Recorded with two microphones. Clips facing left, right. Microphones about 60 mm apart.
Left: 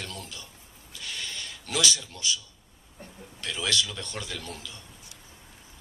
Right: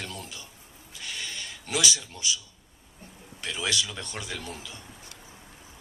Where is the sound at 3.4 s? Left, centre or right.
Centre.